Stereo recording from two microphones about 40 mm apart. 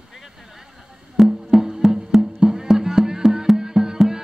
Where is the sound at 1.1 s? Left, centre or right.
Centre.